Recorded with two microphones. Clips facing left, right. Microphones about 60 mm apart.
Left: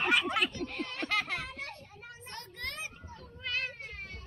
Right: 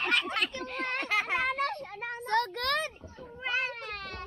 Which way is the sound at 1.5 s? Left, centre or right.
Right.